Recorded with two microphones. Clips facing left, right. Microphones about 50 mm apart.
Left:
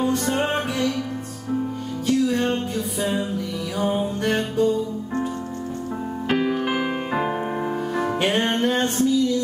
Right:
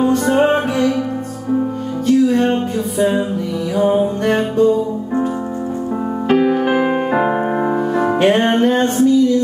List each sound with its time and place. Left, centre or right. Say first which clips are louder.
0.1 s music: right 9 dB; centre
2.0 s music: right 7 dB; centre
6.2 s music: right 8 dB; centre; by 7.8 s right
8.2 s music: right 9 dB; centre